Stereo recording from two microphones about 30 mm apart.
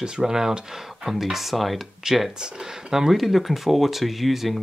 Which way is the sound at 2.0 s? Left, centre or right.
Right.